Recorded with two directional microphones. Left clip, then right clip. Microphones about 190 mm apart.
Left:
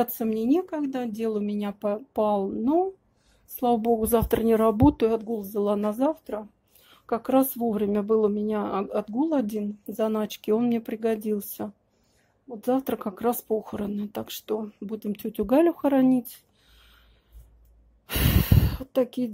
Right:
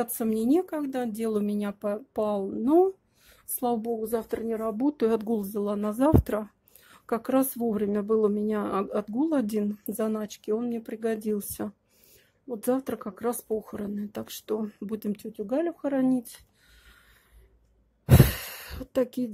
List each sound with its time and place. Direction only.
0.2 s speech: 15° right (ahead or behind)
2.6 s speech: 15° right (ahead or behind)
3.5 s speech: 5° right (ahead or behind)
5.0 s speech: 15° right (ahead or behind)
6.2 s speech: 30° right (ahead or behind)
6.8 s speech: 10° right (ahead or behind)
10.1 s speech: centre (ahead or behind)
15.1 s speech: 10° left (ahead or behind); by 17.0 s 10° right (ahead or behind)
18.0 s sigh: 10° right (ahead or behind)